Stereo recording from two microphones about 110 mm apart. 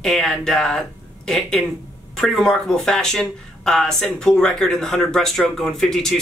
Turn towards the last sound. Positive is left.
turn(degrees=5)  # may be behind; listen again after turning